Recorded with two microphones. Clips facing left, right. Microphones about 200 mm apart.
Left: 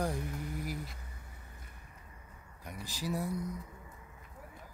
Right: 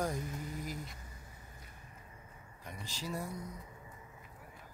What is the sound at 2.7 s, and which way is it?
Speech, 10° left (ahead or behind).